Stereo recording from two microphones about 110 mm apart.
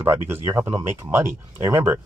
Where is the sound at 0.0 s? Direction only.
25° right (ahead or behind).